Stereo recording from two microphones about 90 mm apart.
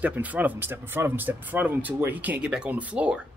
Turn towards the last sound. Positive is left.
turn(degrees=-15)  # may be behind; listen again after turning